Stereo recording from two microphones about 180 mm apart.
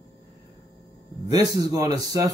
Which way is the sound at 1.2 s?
20° right (ahead or behind).